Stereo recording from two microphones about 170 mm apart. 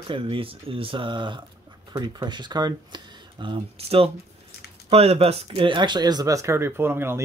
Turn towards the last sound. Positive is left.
turn(degrees=-15)  # may be behind; listen again after turning